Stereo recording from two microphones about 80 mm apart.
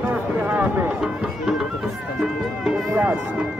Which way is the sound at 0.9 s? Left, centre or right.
Centre.